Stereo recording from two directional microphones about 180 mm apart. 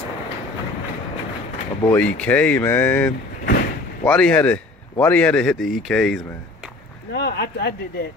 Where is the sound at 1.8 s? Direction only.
10° left (ahead or behind).